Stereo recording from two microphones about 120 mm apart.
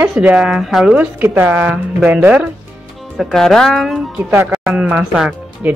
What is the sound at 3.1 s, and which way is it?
A woman's voice, centre (ahead or behind).